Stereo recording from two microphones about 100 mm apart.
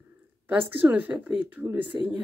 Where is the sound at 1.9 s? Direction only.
35° right (ahead or behind).